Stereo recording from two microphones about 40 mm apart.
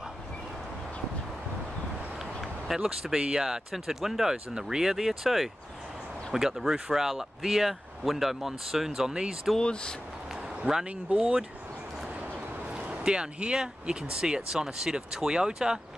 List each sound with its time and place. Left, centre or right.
2.1 s a sound: centre
3.5 s speech: centre
9.1 s speech: centre
9.6 s speech: left
10.9 s speech: right
12.6 s speech: right